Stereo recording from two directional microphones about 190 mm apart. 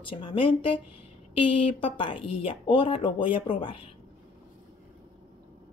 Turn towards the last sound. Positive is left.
turn(degrees=30)  # may be behind; listen again after turning